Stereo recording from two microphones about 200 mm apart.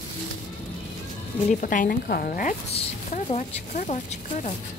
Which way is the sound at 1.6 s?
40° left (ahead or behind).